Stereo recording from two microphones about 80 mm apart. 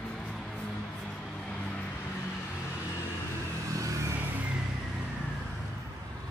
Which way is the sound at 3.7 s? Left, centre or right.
Right.